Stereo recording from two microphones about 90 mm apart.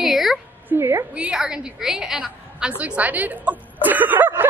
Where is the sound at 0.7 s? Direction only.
30° right (ahead or behind).